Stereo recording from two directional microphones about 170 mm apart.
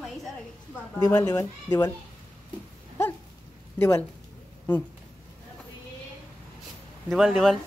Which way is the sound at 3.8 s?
15° left (ahead or behind).